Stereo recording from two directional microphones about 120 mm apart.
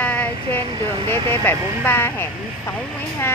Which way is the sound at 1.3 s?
20° left (ahead or behind).